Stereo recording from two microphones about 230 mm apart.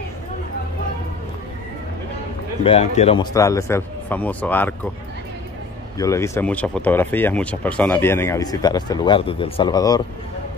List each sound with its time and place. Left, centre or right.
2.6 s speech: left
3.3 s speech: centre
5.9 s speech: centre